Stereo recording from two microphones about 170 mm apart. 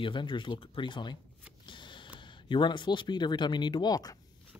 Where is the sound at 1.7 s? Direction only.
30° left (ahead or behind).